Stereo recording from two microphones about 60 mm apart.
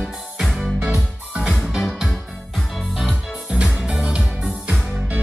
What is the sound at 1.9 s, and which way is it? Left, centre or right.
Music, centre.